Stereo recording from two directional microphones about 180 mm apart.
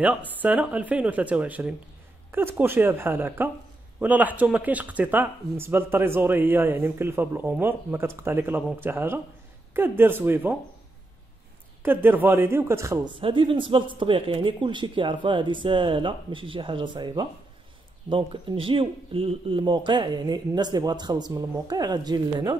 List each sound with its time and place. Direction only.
0.3 s speech: 10° right (ahead or behind)
11.8 s speech: 10° right (ahead or behind)